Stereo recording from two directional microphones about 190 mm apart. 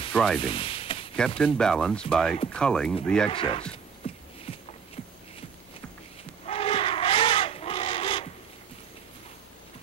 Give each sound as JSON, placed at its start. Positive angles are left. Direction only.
{"t": 0.1, "sound": "sizzle", "side_deg": 0}
{"t": 0.4, "sound": "sizzle", "side_deg": 30}
{"t": 1.4, "sound": "speech", "side_deg": 5}
{"t": 3.3, "sound": "speech", "side_deg": 30}
{"t": 4.5, "sound": "walk", "side_deg": 30}
{"t": 6.4, "sound": "crow", "side_deg": 30}